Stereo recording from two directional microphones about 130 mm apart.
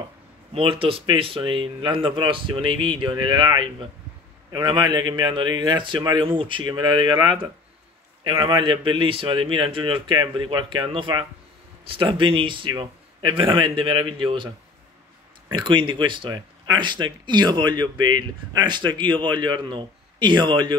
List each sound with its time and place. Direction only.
0.6 s a man's voice: 45° right (ahead or behind)
15.5 s speech: 35° right (ahead or behind)